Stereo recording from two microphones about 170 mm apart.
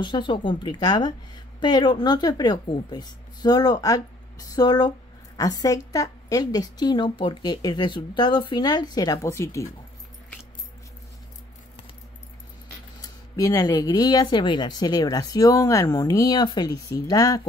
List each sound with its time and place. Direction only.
0.0 s speech: 25° left (ahead or behind)
13.0 s speech: 20° left (ahead or behind)